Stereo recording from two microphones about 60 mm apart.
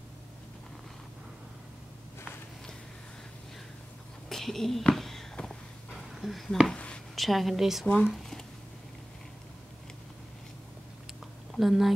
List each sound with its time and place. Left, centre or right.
4.3 s a sound: centre
4.9 s walk: centre
5.3 s vehicle: centre
6.2 s speech: centre
6.7 s a sound: centre
7.2 s a woman's voice: centre
11.5 s speech: centre